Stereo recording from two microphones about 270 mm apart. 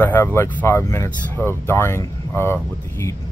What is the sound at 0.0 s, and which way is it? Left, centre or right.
Speech, centre.